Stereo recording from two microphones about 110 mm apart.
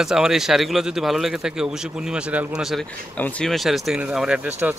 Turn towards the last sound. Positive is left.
turn(degrees=-10)  # may be behind; listen again after turning